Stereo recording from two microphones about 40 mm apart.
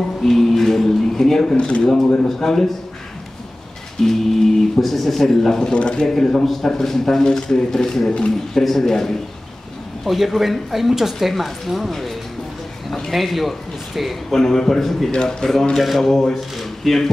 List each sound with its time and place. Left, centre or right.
0.2 s a sound: centre
1.8 s speech: centre
4.0 s speech: centre
5.8 s speech: left
6.0 s speech: centre
10.0 s a woman's voice: centre
13.1 s a man's voice: centre
14.3 s speech: centre
15.0 s speech: left
16.0 s speech: centre